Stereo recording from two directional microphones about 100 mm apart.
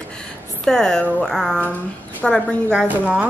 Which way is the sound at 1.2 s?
5° left (ahead or behind).